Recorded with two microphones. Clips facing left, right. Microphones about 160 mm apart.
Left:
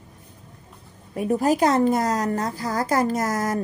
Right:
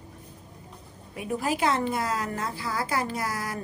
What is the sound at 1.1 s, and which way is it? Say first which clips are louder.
A woman's voice: left 8 dB; 40° left (ahead or behind).